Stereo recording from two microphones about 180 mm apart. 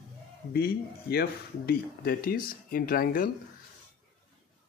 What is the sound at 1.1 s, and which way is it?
Speech, 60° left (ahead or behind).